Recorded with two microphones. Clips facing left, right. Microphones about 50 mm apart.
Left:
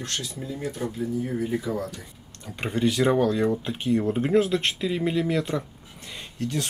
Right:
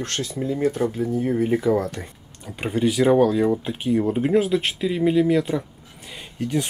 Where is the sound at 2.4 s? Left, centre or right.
Centre.